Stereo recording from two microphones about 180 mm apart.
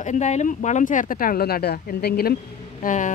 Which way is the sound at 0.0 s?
40° left (ahead or behind).